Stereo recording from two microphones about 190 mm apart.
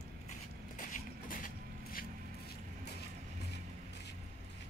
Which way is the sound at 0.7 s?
45° left (ahead or behind).